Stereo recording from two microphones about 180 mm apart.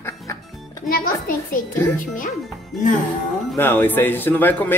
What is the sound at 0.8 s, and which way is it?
Speech, 55° left (ahead or behind).